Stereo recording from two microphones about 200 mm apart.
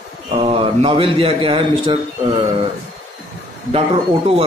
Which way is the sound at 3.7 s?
30° right (ahead or behind).